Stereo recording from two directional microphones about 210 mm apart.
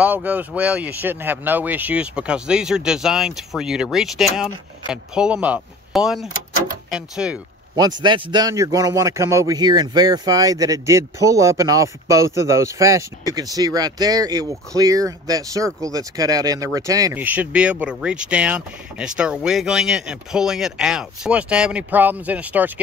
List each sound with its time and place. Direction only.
0.0 s speech: 5° right (ahead or behind)
7.7 s speech: 20° right (ahead or behind)